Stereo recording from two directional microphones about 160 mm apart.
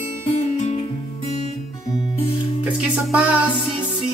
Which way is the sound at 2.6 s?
5° right (ahead or behind).